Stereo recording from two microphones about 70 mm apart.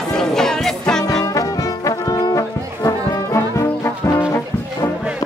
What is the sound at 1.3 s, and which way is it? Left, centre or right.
Music, left.